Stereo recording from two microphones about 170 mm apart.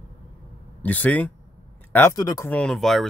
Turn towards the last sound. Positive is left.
turn(degrees=0)  # may be behind; listen again after turning